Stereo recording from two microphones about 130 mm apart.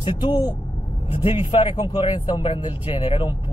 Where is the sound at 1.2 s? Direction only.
45° left (ahead or behind).